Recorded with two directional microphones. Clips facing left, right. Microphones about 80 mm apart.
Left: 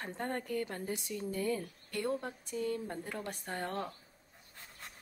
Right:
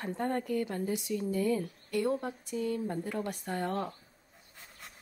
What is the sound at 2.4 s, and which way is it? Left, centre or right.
Speech, left.